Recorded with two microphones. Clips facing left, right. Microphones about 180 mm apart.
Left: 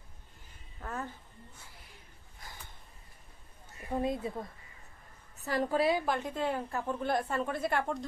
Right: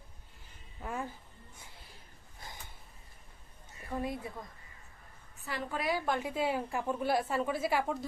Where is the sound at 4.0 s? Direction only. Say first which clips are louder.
Left 5 dB; 25° left (ahead or behind).